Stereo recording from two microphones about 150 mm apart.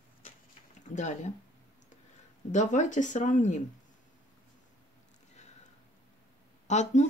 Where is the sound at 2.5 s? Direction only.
55° left (ahead or behind).